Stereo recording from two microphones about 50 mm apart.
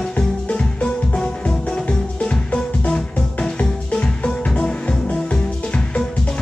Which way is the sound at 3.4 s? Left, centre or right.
Centre.